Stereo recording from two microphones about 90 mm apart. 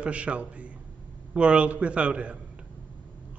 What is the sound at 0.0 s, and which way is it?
A man's voice, 15° right (ahead or behind).